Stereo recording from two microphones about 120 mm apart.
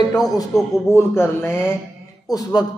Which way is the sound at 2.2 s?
30° left (ahead or behind).